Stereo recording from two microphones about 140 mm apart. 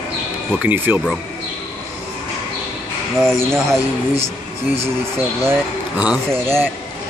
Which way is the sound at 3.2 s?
5° left (ahead or behind).